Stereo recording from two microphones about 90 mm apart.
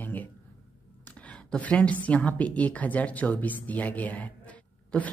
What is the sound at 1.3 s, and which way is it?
A woman's voice, 15° left (ahead or behind).